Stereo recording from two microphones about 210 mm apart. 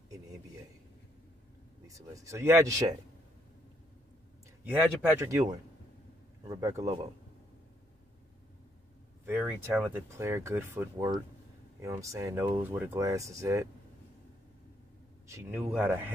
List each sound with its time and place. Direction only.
1.9 s speech: 15° right (ahead or behind)
4.6 s speech: 10° right (ahead or behind)
9.2 s speech: 10° right (ahead or behind)
15.2 s speech: 15° right (ahead or behind)